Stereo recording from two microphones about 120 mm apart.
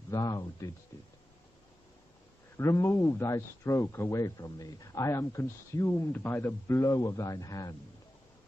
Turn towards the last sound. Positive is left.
turn(degrees=30)  # may be behind; listen again after turning